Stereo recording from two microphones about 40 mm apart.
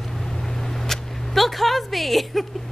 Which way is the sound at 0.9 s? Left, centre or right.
Centre.